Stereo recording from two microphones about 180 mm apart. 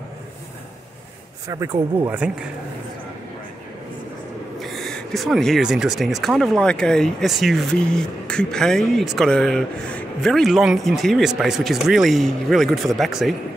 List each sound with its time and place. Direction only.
1.5 s speech: 15° right (ahead or behind)
4.6 s speech: centre (ahead or behind)